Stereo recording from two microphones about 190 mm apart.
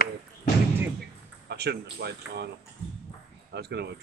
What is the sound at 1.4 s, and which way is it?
Speech, 60° right (ahead or behind).